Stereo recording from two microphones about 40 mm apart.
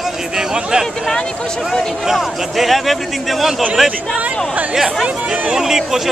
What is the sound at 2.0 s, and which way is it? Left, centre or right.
Speech, centre.